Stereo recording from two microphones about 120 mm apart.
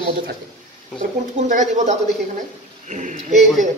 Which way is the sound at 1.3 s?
85° right.